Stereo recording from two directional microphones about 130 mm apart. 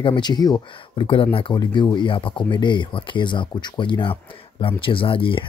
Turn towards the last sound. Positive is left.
turn(degrees=45)  # may be behind; listen again after turning